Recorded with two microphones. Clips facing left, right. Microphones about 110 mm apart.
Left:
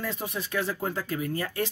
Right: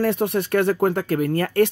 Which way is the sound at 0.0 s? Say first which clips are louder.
Right 13 dB; 70° right (ahead or behind).